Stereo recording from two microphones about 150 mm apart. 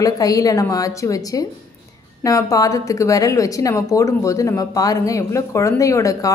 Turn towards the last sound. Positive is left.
turn(degrees=20)  # may be behind; listen again after turning